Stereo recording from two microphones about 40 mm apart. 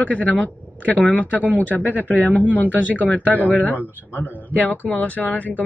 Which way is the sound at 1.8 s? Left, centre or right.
Right.